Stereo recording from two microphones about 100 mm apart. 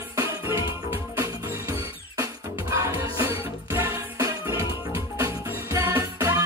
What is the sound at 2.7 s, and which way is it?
Music, 30° right (ahead or behind).